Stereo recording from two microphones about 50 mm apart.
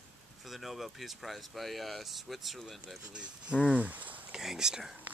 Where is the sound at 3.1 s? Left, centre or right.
Right.